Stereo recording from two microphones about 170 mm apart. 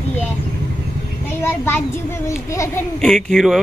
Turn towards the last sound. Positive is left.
turn(degrees=0)  # may be behind; listen again after turning